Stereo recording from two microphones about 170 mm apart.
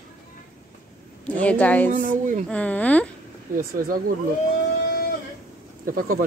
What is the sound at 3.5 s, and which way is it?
Speech, 55° right (ahead or behind).